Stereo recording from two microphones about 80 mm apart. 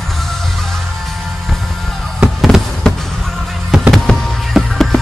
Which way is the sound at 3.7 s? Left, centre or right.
Centre.